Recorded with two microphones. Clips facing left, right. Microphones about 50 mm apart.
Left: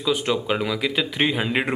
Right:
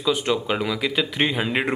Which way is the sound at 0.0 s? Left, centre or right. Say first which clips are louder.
Even; centre.